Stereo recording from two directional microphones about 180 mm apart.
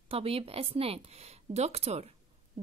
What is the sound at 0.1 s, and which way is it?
A woman's voice, 30° right (ahead or behind).